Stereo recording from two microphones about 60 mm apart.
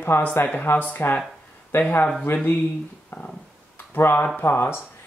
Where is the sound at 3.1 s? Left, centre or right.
Left.